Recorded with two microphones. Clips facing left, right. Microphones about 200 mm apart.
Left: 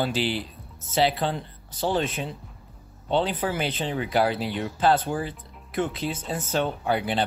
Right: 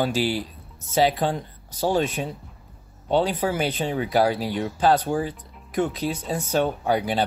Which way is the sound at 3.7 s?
10° right (ahead or behind).